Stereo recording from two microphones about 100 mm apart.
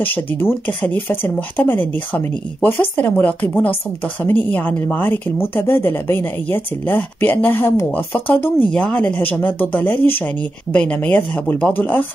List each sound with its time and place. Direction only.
0.0 s speech: 20° left (ahead or behind)